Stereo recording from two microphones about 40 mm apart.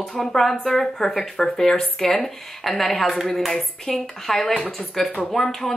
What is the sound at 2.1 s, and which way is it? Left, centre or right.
A woman's voice, centre.